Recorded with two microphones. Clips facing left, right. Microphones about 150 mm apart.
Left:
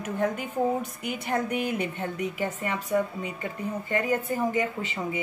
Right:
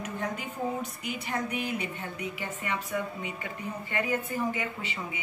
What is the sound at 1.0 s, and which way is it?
Speech, 55° left (ahead or behind).